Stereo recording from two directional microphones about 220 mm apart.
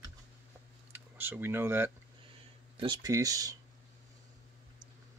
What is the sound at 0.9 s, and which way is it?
Speech, 10° right (ahead or behind).